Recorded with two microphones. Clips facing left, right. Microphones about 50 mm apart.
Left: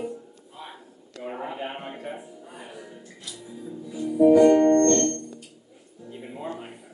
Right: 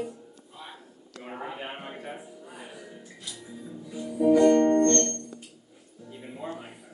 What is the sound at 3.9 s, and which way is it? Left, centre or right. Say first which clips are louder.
Music: left 5 dB; centre.